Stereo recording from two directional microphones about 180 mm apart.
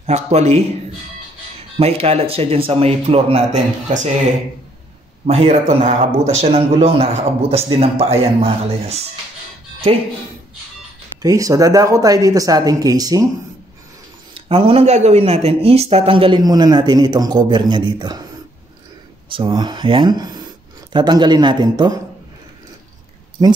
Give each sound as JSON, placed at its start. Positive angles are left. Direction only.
{"t": 0.0, "sound": "a man's voice", "side_deg": -35}
{"t": 1.8, "sound": "a man's voice", "side_deg": -35}
{"t": 5.2, "sound": "a man's voice", "side_deg": -35}
{"t": 11.2, "sound": "speech", "side_deg": -20}
{"t": 14.3, "sound": "speech", "side_deg": -30}
{"t": 19.3, "sound": "speech", "side_deg": -25}